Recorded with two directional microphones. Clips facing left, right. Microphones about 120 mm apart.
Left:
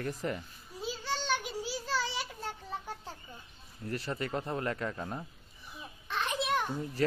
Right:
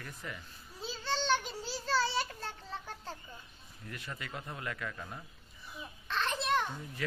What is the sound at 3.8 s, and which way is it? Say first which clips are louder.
A man's voice: left 9 dB; 35° left (ahead or behind).